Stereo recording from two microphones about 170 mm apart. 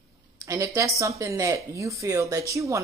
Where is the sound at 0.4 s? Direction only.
20° right (ahead or behind).